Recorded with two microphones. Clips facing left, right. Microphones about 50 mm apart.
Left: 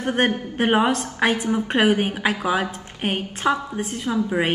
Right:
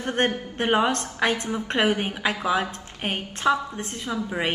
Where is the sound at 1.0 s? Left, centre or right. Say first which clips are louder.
Left 3 dB; left.